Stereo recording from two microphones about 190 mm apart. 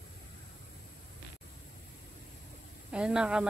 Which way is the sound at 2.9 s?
5° right (ahead or behind).